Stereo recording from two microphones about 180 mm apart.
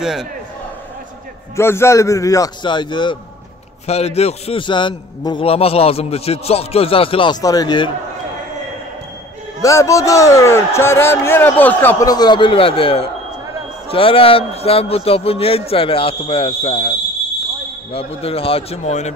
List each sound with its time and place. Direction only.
0.0 s a man's voice: centre (ahead or behind)
1.6 s a man's voice: 15° left (ahead or behind)
3.8 s a man's voice: 35° left (ahead or behind)
9.6 s a man's voice: 15° left (ahead or behind); by 16.9 s 35° left (ahead or behind)
17.9 s a man's voice: 30° left (ahead or behind)